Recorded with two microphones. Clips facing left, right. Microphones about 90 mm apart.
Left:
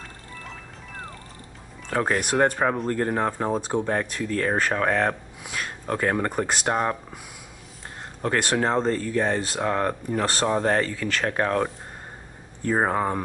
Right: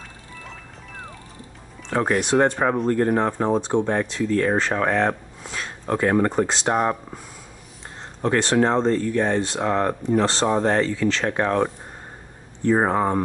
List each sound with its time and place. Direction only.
0.4 s music: centre (ahead or behind)
1.9 s speech: 5° right (ahead or behind)
5.4 s speech: 5° left (ahead or behind)
5.9 s speech: 5° right (ahead or behind)
6.4 s speech: 10° left (ahead or behind)
6.7 s speech: 5° right (ahead or behind)
8.2 s speech: 5° left (ahead or behind)
12.7 s speech: 5° right (ahead or behind)